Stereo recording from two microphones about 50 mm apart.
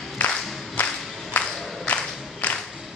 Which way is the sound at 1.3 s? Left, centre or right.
Left.